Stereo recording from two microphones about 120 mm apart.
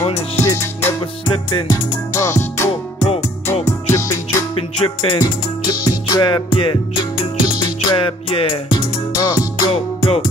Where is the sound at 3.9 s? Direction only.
25° left (ahead or behind).